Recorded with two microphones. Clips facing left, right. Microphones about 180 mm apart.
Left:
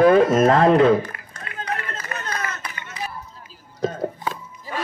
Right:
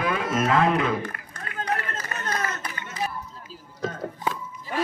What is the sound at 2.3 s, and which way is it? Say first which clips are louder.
Run: right 3 dB; 40° right (ahead or behind).